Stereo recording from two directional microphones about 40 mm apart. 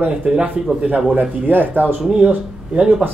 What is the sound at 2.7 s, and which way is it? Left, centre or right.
Speech, right.